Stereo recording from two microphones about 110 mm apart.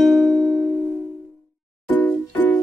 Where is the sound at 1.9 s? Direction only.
15° left (ahead or behind).